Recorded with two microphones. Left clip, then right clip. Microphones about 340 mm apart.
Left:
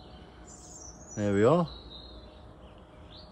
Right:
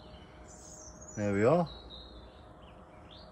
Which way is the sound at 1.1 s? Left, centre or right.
Centre.